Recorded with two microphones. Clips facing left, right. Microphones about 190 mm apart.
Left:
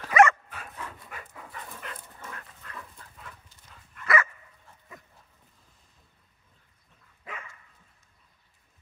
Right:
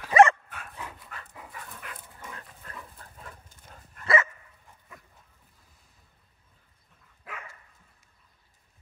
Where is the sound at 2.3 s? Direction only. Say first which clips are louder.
Even; 35° right (ahead or behind).